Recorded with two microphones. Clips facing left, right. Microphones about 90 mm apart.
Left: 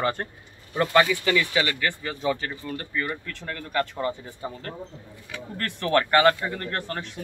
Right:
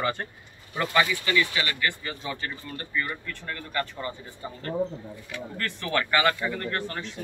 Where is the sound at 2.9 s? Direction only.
65° left (ahead or behind).